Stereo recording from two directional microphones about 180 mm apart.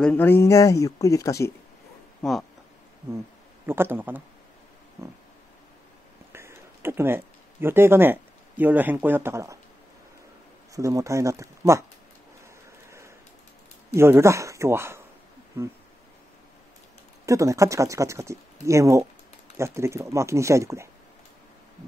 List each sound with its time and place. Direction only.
0.0 s speech: 10° left (ahead or behind)
2.2 s speech: 5° left (ahead or behind)
3.6 s speech: 10° right (ahead or behind)
6.3 s speech: 15° right (ahead or behind)
10.7 s speech: 20° right (ahead or behind)
13.9 s speech: 15° right (ahead or behind)
17.3 s speech: 15° right (ahead or behind)